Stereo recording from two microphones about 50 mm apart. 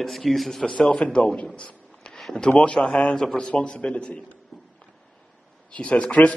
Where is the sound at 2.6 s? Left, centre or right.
Centre.